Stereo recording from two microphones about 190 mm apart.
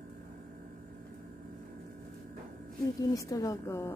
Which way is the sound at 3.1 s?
20° left (ahead or behind).